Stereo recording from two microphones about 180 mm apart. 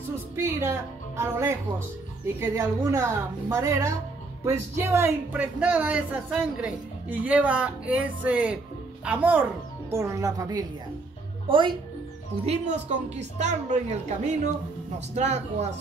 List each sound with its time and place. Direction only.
0.4 s speech: 15° right (ahead or behind)
2.5 s a woman's voice: 15° right (ahead or behind); by 15.7 s 40° right (ahead or behind)